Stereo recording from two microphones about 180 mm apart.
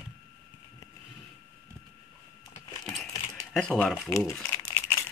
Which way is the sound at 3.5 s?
5° left (ahead or behind).